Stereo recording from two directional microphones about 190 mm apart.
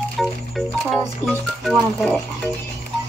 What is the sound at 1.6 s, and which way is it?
Speech, centre (ahead or behind).